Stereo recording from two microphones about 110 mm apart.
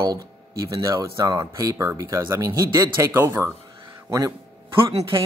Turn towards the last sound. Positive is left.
turn(degrees=-50)  # may be behind; listen again after turning